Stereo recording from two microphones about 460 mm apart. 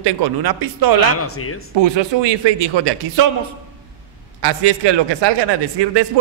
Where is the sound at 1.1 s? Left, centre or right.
Left.